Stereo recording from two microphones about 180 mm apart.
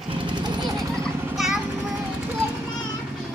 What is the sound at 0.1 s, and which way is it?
Jackhammer, 25° right (ahead or behind).